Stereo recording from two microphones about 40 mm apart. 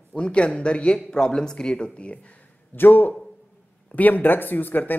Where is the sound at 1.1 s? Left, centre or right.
Centre.